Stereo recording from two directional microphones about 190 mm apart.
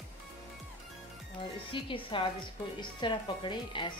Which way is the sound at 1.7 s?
25° left (ahead or behind).